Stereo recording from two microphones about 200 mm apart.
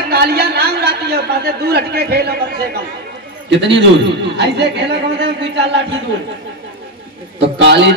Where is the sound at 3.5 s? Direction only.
60° right (ahead or behind).